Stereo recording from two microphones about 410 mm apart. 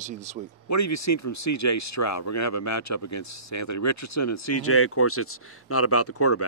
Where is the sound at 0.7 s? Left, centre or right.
Left.